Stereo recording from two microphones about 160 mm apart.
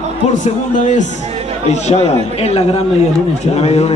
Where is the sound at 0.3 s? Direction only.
50° left (ahead or behind).